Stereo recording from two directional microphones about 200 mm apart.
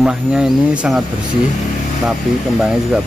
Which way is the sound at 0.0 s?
5° right (ahead or behind).